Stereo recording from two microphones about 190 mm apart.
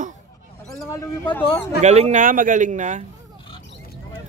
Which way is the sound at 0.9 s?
15° left (ahead or behind).